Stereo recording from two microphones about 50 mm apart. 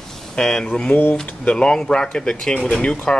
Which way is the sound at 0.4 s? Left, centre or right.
Centre.